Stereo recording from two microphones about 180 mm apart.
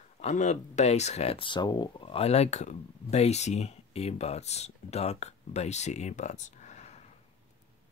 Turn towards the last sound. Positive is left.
turn(degrees=40)  # may be behind; listen again after turning